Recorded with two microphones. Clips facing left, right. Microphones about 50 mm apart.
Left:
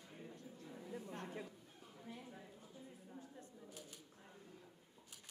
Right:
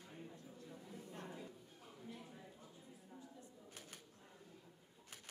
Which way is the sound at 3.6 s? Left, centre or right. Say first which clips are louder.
Left 1 dB; right.